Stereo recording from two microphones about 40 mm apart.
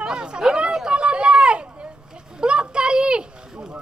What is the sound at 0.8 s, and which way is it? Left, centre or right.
Run, right.